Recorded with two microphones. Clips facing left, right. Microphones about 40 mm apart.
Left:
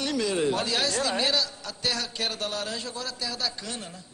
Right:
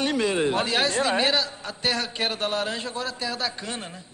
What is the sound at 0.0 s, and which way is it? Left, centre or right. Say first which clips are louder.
A man's voice: right 3 dB; right.